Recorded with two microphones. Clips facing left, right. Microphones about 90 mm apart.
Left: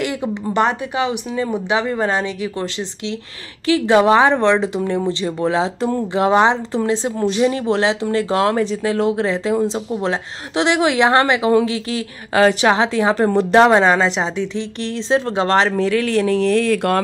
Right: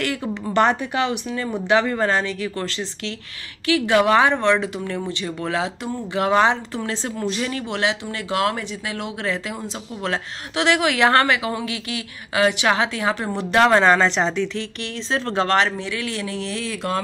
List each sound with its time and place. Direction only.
0.0 s speech: 15° left (ahead or behind)
3.6 s a woman's voice: 30° left (ahead or behind)
13.6 s speech: 15° left (ahead or behind)
15.4 s a woman's voice: 30° left (ahead or behind)
15.8 s speech: 45° left (ahead or behind); by 17.0 s 60° left (ahead or behind)